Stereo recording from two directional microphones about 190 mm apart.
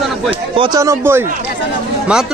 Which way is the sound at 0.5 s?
25° right (ahead or behind).